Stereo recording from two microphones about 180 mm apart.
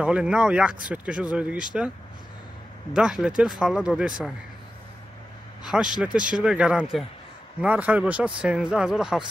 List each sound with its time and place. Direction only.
0.0 s speech: 5° right (ahead or behind)
2.9 s speech: 5° right (ahead or behind)
5.6 s speech: 5° right (ahead or behind)